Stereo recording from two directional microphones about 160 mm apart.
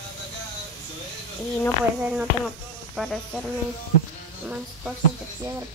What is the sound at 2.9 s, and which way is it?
Speech, centre (ahead or behind).